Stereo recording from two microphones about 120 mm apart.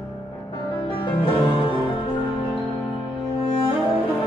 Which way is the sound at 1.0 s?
45° left (ahead or behind).